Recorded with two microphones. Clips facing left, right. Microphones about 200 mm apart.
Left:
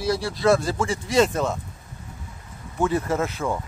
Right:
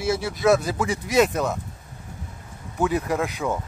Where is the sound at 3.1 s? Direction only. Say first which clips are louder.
Even; 15° right (ahead or behind).